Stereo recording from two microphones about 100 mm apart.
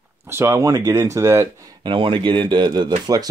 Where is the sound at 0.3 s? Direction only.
25° right (ahead or behind).